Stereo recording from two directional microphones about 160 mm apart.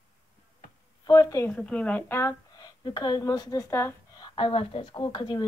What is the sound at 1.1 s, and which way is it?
A woman's voice, 20° left (ahead or behind).